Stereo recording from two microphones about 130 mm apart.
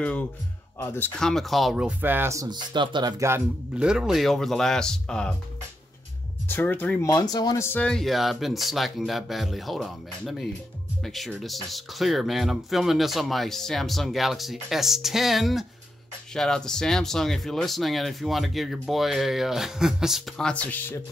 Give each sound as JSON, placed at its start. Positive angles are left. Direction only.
{"t": 0.7, "sound": "speech", "side_deg": 15}
{"t": 1.2, "sound": "speech", "side_deg": 0}
{"t": 3.7, "sound": "speech", "side_deg": -5}
{"t": 6.5, "sound": "speech", "side_deg": 15}
{"t": 7.0, "sound": "speech", "side_deg": 25}
{"t": 7.6, "sound": "speech", "side_deg": 15}
{"t": 7.9, "sound": "speech", "side_deg": 0}